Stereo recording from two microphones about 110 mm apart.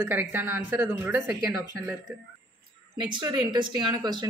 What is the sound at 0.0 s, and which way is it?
Speech, 20° right (ahead or behind).